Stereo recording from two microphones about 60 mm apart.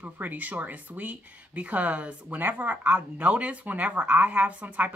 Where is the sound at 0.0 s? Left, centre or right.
Right.